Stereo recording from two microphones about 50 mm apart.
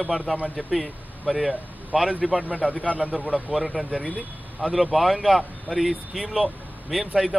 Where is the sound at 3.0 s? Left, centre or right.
Right.